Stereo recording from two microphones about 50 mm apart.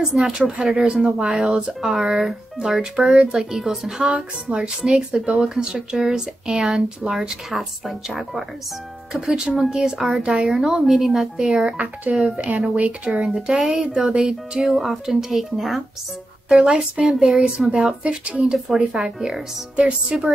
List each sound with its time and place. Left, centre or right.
0.2 s speech: centre
4.1 s speech: centre
11.7 s speech: right
13.2 s speech: centre
16.6 s speech: centre
18.0 s speech: right
18.4 s speech: centre
18.8 s speech: centre